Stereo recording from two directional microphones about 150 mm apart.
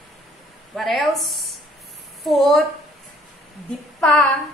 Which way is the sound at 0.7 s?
Centre (ahead or behind).